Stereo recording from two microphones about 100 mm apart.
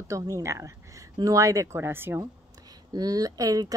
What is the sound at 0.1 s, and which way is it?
A woman's voice, 35° right (ahead or behind).